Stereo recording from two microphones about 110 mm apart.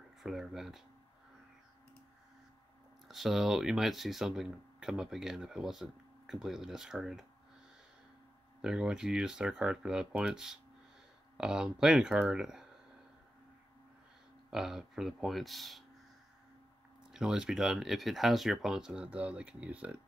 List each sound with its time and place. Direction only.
0.2 s speech: 5° right (ahead or behind)
3.1 s speech: centre (ahead or behind)
8.5 s speech: 5° right (ahead or behind)
14.5 s speech: 5° right (ahead or behind)
17.1 s speech: 5° right (ahead or behind)